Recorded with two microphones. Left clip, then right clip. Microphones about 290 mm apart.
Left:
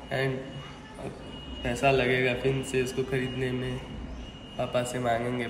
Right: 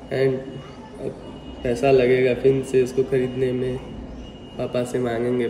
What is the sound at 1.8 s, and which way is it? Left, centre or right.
A man's voice, left.